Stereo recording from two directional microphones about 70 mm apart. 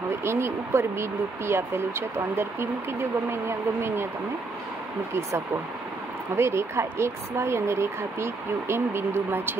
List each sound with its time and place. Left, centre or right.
0.1 s speech: right
6.3 s speech: right